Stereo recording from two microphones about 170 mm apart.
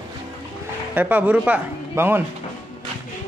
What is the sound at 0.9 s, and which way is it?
A man's voice, 10° right (ahead or behind).